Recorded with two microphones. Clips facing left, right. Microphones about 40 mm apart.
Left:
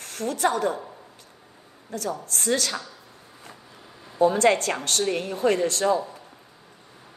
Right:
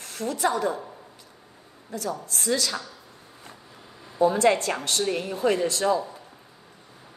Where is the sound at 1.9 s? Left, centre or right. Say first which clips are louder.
Left 1 dB; left.